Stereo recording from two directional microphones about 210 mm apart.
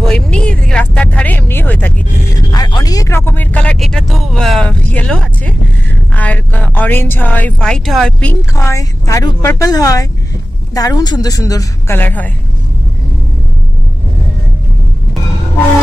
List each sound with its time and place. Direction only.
0.0 s vehicle: 5° left (ahead or behind)
2.5 s a woman's voice: 20° left (ahead or behind)